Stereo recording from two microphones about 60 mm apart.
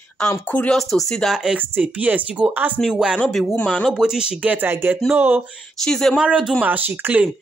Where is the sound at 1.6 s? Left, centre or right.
Right.